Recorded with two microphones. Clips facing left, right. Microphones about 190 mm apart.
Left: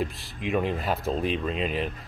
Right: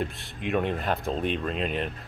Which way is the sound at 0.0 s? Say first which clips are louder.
Left 1 dB; centre (ahead or behind).